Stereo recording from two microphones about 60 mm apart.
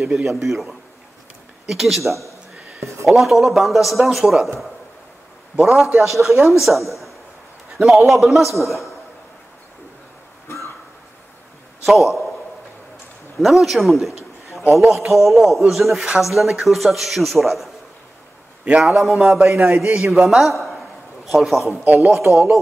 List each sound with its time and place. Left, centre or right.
0.0 s a man's voice: centre
2.8 s a sound: right
3.1 s a man's voice: centre
5.6 s a man's voice: centre
11.8 s a man's voice: centre
13.4 s a man's voice: centre
18.8 s a man's voice: centre
22.2 s speech: right